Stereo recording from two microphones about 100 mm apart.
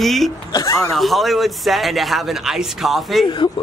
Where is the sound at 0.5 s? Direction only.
35° left (ahead or behind).